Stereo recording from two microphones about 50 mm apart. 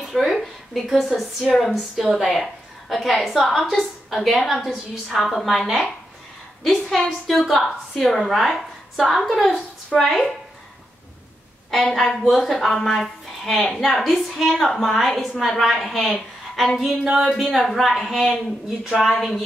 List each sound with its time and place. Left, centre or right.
0.0 s a woman's voice: centre
6.6 s a sound: centre
7.4 s a woman's voice: centre
11.7 s a woman's voice: centre